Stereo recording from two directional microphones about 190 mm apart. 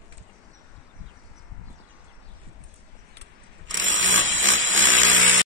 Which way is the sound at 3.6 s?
90° right.